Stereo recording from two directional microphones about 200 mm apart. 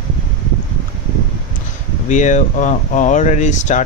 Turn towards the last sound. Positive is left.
turn(degrees=35)  # may be behind; listen again after turning